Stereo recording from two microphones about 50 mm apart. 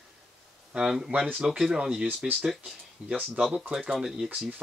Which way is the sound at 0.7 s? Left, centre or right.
Centre.